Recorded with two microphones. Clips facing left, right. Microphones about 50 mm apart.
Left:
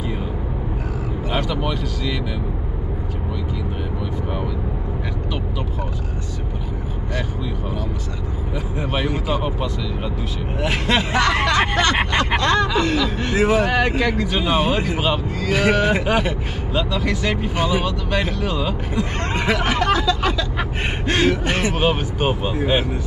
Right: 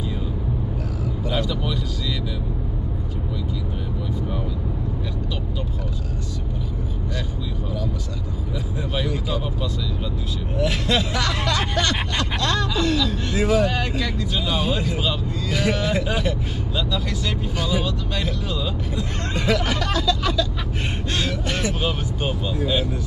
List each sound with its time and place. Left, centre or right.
1.3 s speech: left
8.7 s speech: left